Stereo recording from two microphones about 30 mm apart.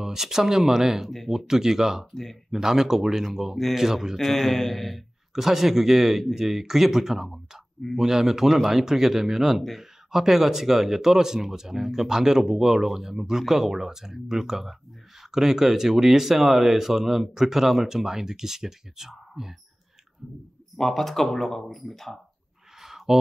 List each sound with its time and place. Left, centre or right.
0.0 s speech: centre
4.3 s a man's voice: centre
5.3 s speech: centre
20.7 s speech: centre
22.8 s a sound: centre